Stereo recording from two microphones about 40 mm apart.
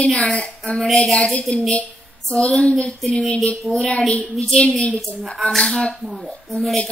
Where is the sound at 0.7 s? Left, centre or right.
Centre.